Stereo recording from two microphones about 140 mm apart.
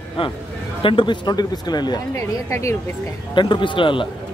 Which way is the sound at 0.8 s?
40° left (ahead or behind).